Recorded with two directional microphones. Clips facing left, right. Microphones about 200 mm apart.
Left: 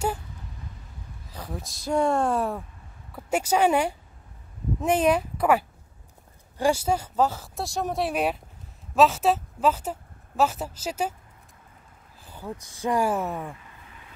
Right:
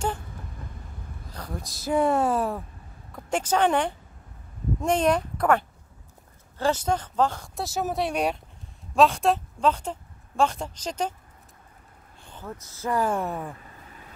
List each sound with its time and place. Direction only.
1.3 s a woman's voice: 5° left (ahead or behind)
12.2 s speech: 10° left (ahead or behind)